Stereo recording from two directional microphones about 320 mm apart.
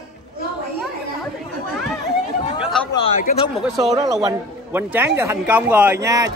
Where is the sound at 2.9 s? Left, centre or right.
Centre.